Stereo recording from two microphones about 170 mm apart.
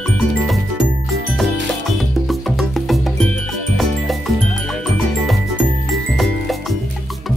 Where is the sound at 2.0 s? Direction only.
Centre (ahead or behind).